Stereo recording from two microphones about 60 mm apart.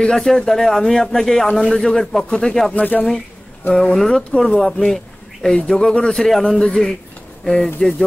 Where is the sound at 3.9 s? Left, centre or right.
Centre.